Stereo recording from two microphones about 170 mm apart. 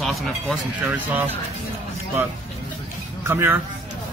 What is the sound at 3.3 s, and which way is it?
Speech, 10° right (ahead or behind).